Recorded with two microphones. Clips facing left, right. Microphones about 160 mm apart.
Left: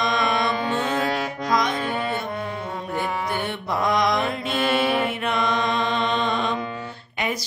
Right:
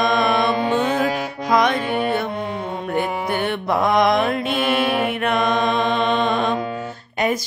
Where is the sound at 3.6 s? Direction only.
55° right (ahead or behind).